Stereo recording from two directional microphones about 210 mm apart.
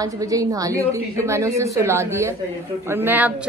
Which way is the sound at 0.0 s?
15° right (ahead or behind).